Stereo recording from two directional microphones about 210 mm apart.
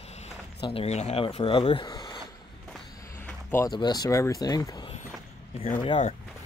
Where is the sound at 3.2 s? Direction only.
15° left (ahead or behind).